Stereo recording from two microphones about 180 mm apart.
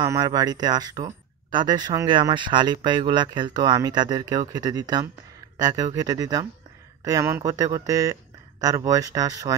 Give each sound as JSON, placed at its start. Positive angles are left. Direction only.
{"t": 0.0, "sound": "speech", "side_deg": -20}